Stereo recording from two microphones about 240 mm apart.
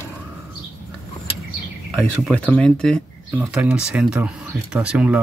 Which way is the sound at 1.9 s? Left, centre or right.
Centre.